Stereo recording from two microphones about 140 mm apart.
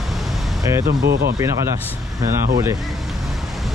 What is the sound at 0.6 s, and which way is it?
Speech, 20° right (ahead or behind).